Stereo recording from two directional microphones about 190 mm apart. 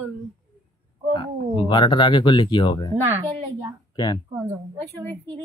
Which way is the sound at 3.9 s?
20° left (ahead or behind).